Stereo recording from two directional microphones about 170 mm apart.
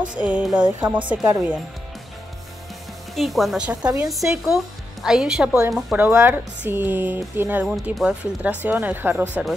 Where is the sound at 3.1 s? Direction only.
Centre (ahead or behind).